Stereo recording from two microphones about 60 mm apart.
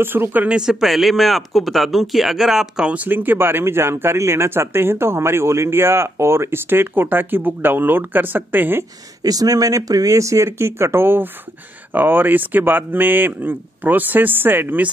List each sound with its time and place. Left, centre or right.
0.0 s speech: right
0.6 s speech: centre
2.9 s speech: right
9.2 s speech: right